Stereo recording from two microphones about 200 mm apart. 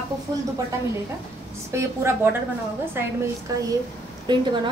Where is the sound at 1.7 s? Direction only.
15° right (ahead or behind).